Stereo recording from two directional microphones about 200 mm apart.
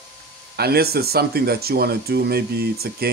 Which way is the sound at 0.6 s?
50° right (ahead or behind).